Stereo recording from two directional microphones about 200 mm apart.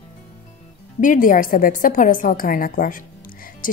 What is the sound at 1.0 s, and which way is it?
Speech, 40° left (ahead or behind).